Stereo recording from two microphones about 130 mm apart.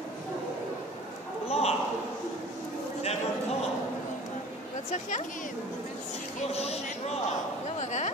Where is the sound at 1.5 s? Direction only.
50° left (ahead or behind).